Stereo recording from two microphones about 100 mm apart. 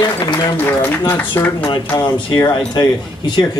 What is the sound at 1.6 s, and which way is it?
Speech, 50° left (ahead or behind).